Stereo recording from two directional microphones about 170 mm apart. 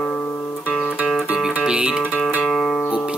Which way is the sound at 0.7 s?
5° left (ahead or behind).